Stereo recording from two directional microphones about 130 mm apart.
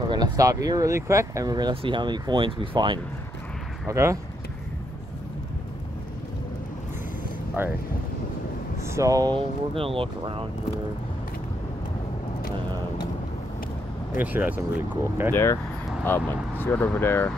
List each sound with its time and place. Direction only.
0.1 s speech: 30° right (ahead or behind)
3.8 s speech: 25° right (ahead or behind)
7.6 s speech: 15° right (ahead or behind)
8.8 s speech: 25° right (ahead or behind)
9.3 s speech: 45° right (ahead or behind)
14.1 s speech: 15° right (ahead or behind)
15.3 s speech: 20° left (ahead or behind)